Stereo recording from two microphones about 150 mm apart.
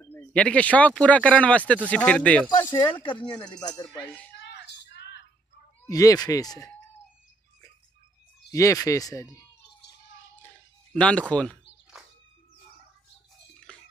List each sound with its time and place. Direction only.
0.0 s speech: 10° left (ahead or behind)
2.7 s speech: 30° left (ahead or behind)
5.9 s speech: 25° left (ahead or behind)
8.5 s speech: 20° left (ahead or behind)
10.9 s speech: 5° left (ahead or behind)